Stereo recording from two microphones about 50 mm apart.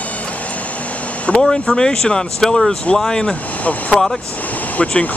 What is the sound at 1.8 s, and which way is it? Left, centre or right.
Speech, centre.